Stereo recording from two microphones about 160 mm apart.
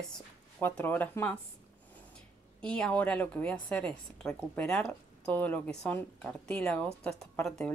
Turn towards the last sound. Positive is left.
turn(degrees=10)  # may be behind; listen again after turning